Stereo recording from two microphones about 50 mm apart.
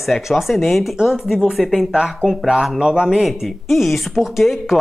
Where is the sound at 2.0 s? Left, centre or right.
Centre.